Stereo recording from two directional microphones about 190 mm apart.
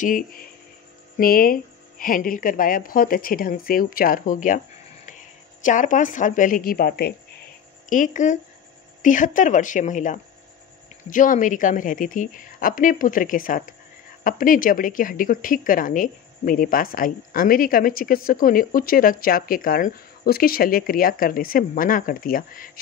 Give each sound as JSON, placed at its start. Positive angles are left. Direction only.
{"t": 0.0, "sound": "speech", "side_deg": 45}
{"t": 5.6, "sound": "speech", "side_deg": 40}
{"t": 7.9, "sound": "a woman's voice", "side_deg": 40}